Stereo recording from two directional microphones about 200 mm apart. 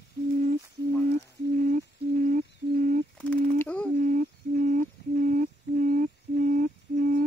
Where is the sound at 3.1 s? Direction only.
10° left (ahead or behind).